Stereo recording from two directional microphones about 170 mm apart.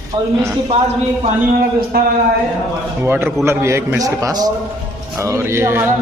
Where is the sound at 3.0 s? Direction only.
15° right (ahead or behind).